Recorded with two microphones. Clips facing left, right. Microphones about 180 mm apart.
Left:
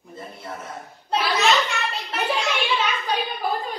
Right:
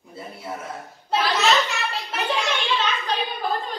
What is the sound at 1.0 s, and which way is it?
Children playing, centre (ahead or behind).